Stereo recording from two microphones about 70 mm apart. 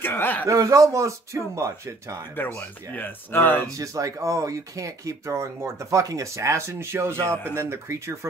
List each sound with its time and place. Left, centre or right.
0.0 s speech: left
0.5 s speech: right
2.3 s speech: left
3.6 s speech: right